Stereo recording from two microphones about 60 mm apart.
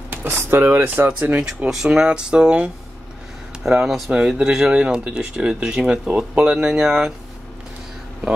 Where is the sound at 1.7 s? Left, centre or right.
Centre.